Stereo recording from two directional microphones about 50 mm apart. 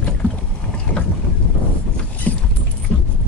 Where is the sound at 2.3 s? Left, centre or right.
Left.